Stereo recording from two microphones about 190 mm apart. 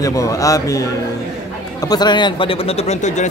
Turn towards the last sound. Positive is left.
turn(degrees=40)  # may be behind; listen again after turning